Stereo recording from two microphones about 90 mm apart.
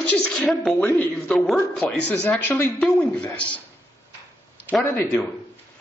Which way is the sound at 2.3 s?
20° left (ahead or behind).